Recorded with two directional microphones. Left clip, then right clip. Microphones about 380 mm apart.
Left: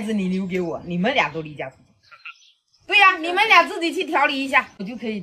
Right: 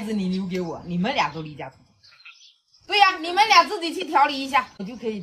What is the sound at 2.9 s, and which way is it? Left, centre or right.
A woman's voice, centre.